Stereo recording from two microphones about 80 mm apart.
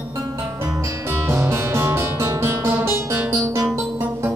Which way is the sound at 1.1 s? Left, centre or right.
Right.